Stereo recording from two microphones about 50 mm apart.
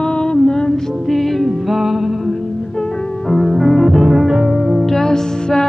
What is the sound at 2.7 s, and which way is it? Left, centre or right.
Music, centre.